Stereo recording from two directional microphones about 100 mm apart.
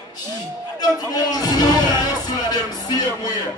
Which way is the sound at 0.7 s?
40° left (ahead or behind).